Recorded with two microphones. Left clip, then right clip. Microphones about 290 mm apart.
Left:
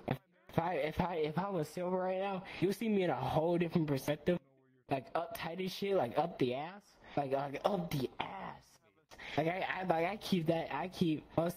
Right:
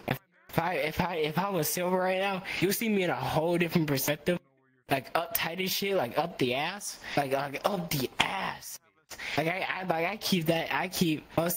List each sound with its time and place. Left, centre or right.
0.0 s speech: right
8.3 s a sound: right
9.1 s speech: centre